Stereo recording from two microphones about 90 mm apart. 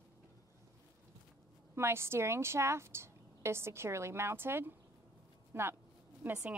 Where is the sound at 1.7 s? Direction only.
30° right (ahead or behind).